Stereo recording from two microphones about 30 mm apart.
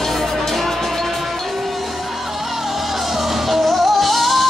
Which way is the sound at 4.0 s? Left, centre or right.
Centre.